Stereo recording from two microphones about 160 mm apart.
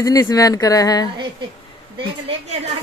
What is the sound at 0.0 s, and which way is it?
A man's voice, 20° left (ahead or behind).